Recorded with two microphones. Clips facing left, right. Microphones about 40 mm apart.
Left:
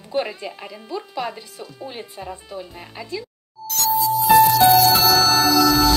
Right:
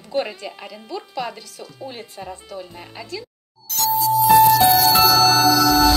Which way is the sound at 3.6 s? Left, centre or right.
Centre.